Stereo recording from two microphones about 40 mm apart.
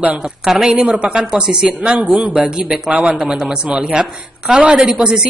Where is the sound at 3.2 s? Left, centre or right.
Centre; by 4.7 s right.